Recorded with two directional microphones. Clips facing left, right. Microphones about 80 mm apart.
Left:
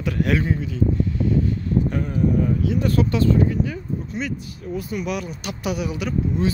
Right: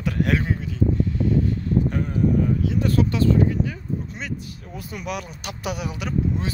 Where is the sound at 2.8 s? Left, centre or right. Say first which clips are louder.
Even; centre.